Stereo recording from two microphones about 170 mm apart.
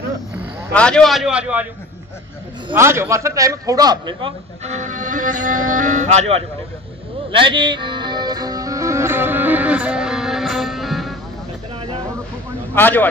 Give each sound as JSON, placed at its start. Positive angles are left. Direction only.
{"t": 0.7, "sound": "a man's voice", "side_deg": 5}
{"t": 2.7, "sound": "a man's voice", "side_deg": -15}
{"t": 4.6, "sound": "music", "side_deg": -45}
{"t": 7.3, "sound": "music", "side_deg": -30}
{"t": 12.7, "sound": "speech", "side_deg": 10}